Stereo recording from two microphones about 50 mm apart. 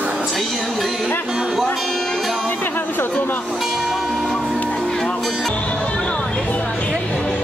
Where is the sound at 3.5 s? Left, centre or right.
Centre.